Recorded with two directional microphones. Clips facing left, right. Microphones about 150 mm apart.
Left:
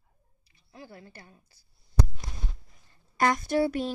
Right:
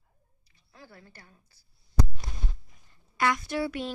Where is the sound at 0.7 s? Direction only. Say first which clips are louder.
Left 5 dB; 20° left (ahead or behind).